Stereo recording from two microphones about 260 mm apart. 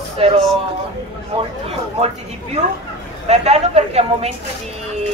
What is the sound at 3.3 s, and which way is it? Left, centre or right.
Speech, right.